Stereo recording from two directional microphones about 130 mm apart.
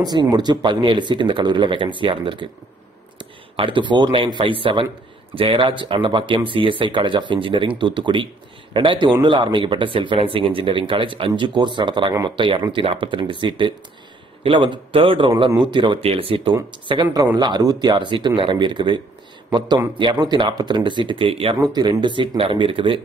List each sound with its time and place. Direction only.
0.0 s speech: 30° right (ahead or behind)
20.0 s speech: 35° right (ahead or behind)
21.5 s speech: 30° right (ahead or behind)